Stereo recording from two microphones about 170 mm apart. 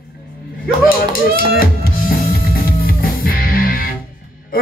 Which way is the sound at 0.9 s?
60° left (ahead or behind).